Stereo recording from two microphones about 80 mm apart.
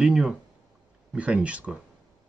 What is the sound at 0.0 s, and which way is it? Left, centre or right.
Speech, centre.